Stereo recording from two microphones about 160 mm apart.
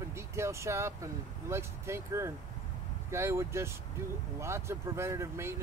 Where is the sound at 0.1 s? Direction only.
15° right (ahead or behind).